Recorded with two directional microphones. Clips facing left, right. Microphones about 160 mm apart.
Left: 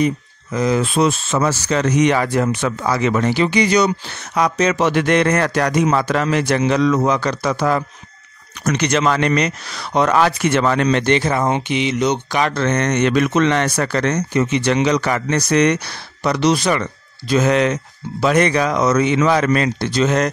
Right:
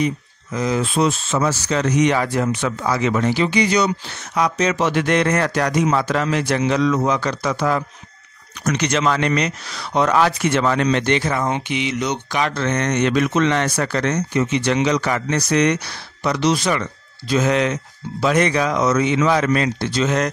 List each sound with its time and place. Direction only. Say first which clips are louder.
0.0 s a man's voice: left 3 dB; 60° left (ahead or behind)
2.5 s a man's voice: left 2 dB; 45° left (ahead or behind); by 3.9 s 70° left (ahead or behind)
4.4 s a man's voice: left 2 dB; 55° left (ahead or behind)
8.8 s a man's voice: left 2 dB; 55° left (ahead or behind)
11.2 s speech: left 3 dB; 30° left (ahead or behind)
12.3 s a man's voice: left 3 dB; 50° left (ahead or behind)
19.0 s a man's voice: left 2 dB; 60° left (ahead or behind)